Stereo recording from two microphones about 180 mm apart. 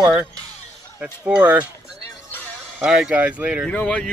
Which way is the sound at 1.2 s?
5° right (ahead or behind).